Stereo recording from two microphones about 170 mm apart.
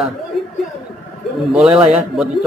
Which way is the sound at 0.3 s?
Centre (ahead or behind).